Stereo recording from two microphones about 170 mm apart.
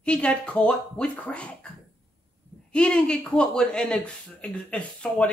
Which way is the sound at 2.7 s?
5° left (ahead or behind).